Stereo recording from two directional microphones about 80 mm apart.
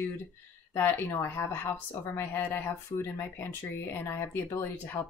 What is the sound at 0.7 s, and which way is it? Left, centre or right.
Speech, left.